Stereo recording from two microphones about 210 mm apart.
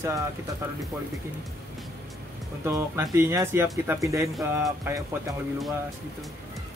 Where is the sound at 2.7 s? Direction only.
15° right (ahead or behind).